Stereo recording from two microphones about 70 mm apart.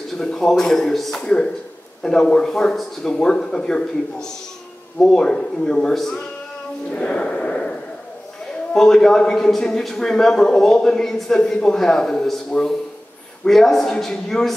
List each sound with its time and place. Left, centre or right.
0.2 s a man's voice: centre
8.7 s a man's voice: centre